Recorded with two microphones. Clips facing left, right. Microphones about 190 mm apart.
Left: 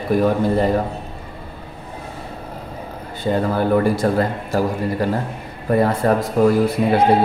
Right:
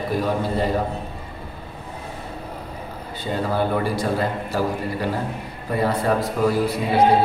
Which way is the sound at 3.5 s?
50° left (ahead or behind).